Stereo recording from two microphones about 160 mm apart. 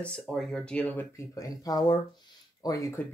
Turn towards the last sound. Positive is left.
turn(degrees=20)  # may be behind; listen again after turning